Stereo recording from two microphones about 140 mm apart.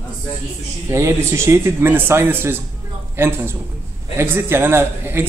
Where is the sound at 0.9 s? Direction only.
20° right (ahead or behind).